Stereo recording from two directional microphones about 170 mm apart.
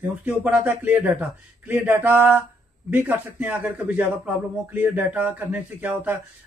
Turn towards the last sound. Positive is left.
turn(degrees=-10)  # may be behind; listen again after turning